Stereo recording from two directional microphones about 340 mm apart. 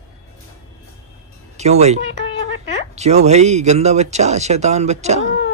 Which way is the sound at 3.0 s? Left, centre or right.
Centre.